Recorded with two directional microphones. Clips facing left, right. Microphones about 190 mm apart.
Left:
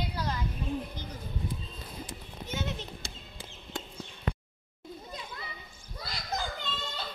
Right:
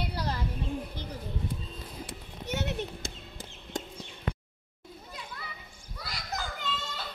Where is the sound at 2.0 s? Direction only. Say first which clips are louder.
Right 3 dB; 70° right (ahead or behind); by 3.8 s 45° right (ahead or behind).